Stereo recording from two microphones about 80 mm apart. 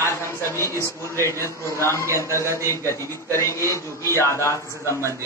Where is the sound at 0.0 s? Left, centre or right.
Left.